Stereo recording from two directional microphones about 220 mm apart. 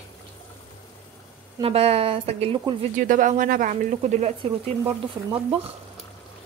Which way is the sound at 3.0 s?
35° right (ahead or behind).